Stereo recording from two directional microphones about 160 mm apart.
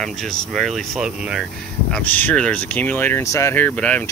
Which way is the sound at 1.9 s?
10° left (ahead or behind).